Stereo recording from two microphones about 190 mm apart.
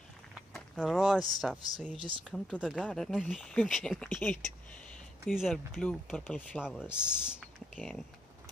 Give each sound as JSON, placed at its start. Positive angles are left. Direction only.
{"t": 0.3, "sound": "a sound", "side_deg": 0}
{"t": 1.4, "sound": "speech", "side_deg": 0}
{"t": 2.0, "sound": "speech", "side_deg": -25}
{"t": 2.3, "sound": "speech", "side_deg": 5}